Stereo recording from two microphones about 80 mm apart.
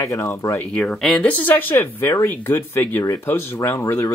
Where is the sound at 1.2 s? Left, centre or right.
Centre.